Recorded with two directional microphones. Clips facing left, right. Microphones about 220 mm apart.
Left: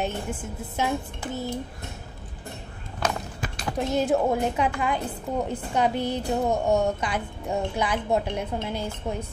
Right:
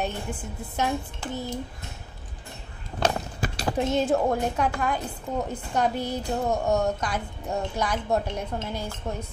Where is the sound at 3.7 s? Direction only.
Centre (ahead or behind).